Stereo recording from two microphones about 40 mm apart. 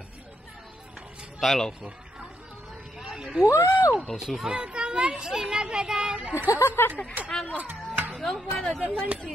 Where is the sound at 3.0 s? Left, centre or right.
Centre.